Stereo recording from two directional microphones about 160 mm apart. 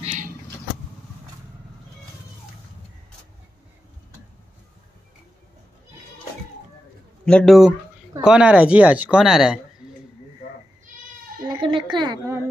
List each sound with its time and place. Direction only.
0.0 s vehicle: 45° right (ahead or behind)
7.2 s a woman's voice: 5° left (ahead or behind)
11.4 s a sound: 30° right (ahead or behind)